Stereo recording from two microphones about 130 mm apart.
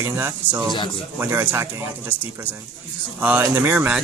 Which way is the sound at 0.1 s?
15° right (ahead or behind).